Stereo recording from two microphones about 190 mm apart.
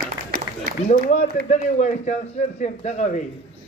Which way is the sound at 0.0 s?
50° right (ahead or behind).